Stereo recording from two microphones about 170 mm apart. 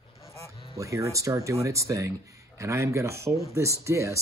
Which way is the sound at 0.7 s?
20° right (ahead or behind).